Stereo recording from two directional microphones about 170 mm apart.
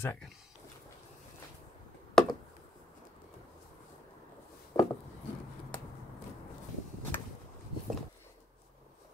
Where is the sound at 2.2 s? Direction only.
5° left (ahead or behind).